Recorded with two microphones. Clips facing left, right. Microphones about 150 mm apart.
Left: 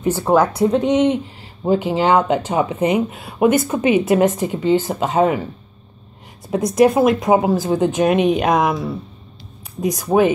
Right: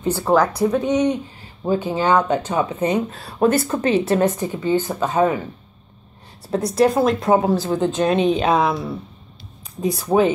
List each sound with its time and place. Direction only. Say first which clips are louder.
0.3 s speech: left 2 dB; 25° left (ahead or behind)
6.5 s speech: left 3 dB; 15° left (ahead or behind)
9.8 s speech: left 2 dB; 10° left (ahead or behind)